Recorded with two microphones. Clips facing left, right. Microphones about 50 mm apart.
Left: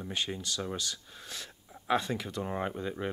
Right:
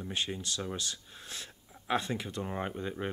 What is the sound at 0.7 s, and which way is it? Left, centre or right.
Speech, right.